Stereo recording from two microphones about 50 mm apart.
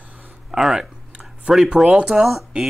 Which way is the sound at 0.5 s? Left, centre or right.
Centre.